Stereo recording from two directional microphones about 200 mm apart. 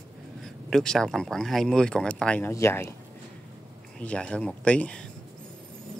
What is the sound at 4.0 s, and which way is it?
Speech, 5° left (ahead or behind).